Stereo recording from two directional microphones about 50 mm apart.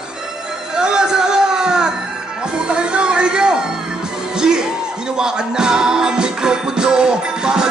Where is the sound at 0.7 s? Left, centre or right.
Centre.